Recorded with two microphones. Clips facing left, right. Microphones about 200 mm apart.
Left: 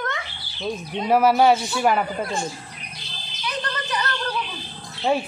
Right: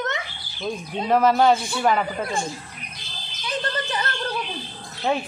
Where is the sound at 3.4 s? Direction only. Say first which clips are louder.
Right 2 dB; 30° right (ahead or behind).